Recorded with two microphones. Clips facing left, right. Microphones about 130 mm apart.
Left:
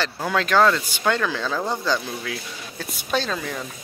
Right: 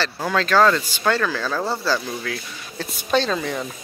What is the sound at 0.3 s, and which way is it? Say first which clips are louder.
A woman's voice: right 1 dB; 10° left (ahead or behind).